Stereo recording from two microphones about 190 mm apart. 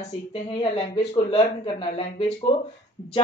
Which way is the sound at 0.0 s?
30° left (ahead or behind).